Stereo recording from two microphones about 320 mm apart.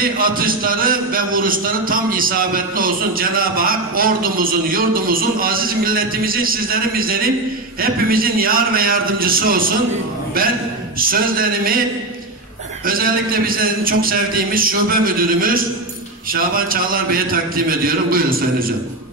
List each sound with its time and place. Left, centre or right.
0.0 s a man's voice: right
11.0 s a man's voice: right
12.8 s a man's voice: right